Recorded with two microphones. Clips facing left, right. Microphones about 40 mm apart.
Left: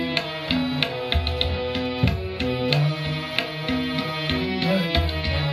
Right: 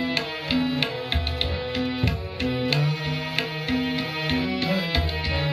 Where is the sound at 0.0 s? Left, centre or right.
Centre.